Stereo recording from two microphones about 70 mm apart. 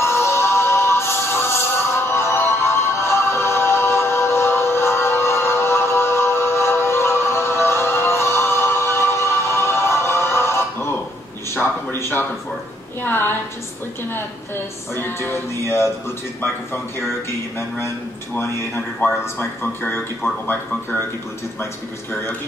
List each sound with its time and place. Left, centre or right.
0.0 s music: left
12.0 s a sound: left
13.0 s music: left
15.0 s music: left
19.0 s music: left